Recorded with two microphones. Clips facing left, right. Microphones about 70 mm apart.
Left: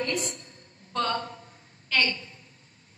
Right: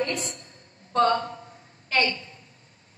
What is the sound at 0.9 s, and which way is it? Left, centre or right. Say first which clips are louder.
A woman's voice: right 7 dB; right.